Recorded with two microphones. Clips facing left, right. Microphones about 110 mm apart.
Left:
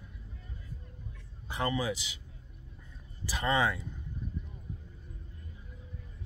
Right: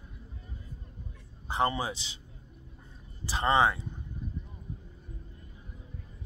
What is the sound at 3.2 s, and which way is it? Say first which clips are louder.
Speech: right 4 dB; 30° right (ahead or behind).